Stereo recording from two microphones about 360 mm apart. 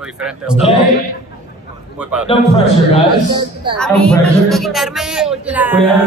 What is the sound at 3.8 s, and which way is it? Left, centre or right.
A man's voice, centre.